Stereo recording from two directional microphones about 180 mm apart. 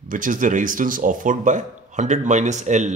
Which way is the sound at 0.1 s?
45° right (ahead or behind).